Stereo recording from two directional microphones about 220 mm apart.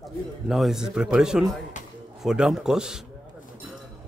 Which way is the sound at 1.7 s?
35° left (ahead or behind).